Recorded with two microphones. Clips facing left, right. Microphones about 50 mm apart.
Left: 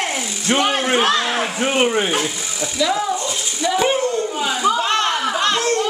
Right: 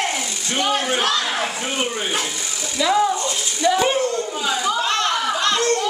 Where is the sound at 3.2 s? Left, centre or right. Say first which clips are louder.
Right 2 dB; centre.